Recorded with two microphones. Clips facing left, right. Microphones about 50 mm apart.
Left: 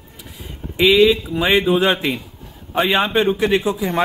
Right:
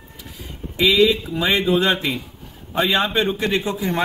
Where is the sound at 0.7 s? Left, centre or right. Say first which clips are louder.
Left 3 dB; left.